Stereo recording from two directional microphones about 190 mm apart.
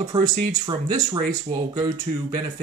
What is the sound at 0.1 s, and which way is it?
Speech, 20° right (ahead or behind).